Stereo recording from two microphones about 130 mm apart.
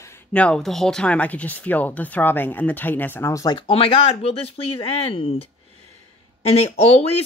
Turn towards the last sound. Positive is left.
turn(degrees=55)  # may be behind; listen again after turning